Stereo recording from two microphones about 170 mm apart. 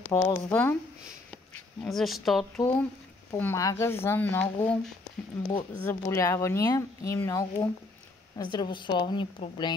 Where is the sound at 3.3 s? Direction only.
15° left (ahead or behind).